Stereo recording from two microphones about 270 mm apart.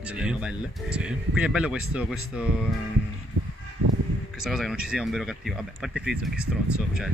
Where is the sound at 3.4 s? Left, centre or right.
Right.